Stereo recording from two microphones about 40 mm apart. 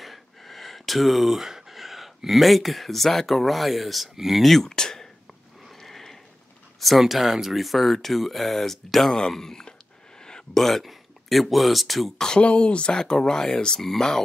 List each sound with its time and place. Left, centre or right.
0.0 s speech: centre
4.6 s a sound: centre
6.8 s speech: centre
9.7 s a sound: centre
10.6 s speech: centre
12.4 s speech: left
12.9 s speech: centre